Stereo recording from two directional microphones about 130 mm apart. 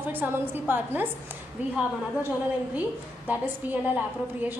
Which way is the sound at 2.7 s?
10° right (ahead or behind).